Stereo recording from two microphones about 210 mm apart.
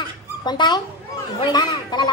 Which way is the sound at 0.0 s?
20° left (ahead or behind).